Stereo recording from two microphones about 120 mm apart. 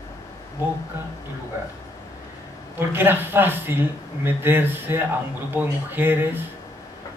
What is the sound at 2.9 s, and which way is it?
Speech, 20° right (ahead or behind).